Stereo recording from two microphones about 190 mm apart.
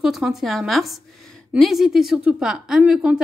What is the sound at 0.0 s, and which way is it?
A woman's voice, centre (ahead or behind).